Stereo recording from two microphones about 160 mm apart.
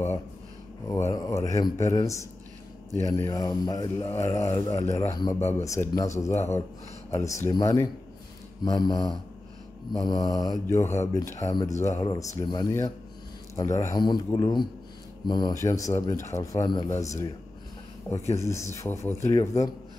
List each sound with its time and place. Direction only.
1.1 s speech: 20° left (ahead or behind)
18.3 s speech: 20° left (ahead or behind)